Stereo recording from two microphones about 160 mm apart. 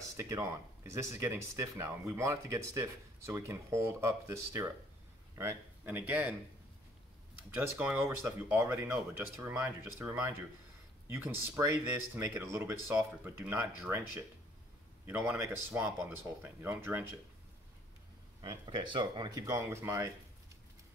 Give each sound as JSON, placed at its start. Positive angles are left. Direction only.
{"t": 0.0, "sound": "speech", "side_deg": -20}
{"t": 7.5, "sound": "speech", "side_deg": -10}
{"t": 15.0, "sound": "speech", "side_deg": -15}
{"t": 18.4, "sound": "speech", "side_deg": -25}